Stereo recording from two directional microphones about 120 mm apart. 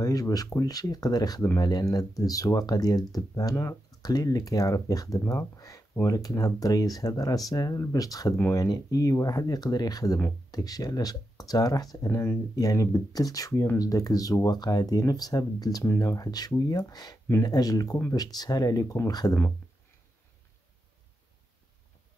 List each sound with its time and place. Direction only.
0.0 s speech: 30° left (ahead or behind)
5.2 s speech: 20° left (ahead or behind)
5.6 s speech: 30° left (ahead or behind)